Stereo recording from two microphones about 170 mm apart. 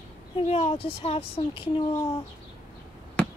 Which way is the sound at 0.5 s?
35° left (ahead or behind).